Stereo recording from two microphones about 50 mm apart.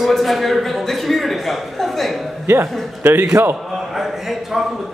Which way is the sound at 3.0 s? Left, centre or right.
Right.